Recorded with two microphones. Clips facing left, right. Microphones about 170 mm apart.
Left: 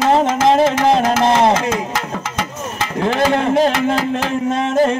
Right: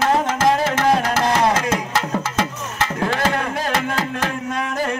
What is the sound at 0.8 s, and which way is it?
Music, 25° left (ahead or behind).